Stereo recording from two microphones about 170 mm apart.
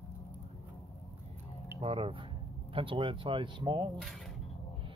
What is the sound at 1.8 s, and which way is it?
Speech, 30° right (ahead or behind).